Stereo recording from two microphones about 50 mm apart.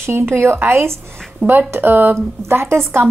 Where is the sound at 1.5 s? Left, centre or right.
Right.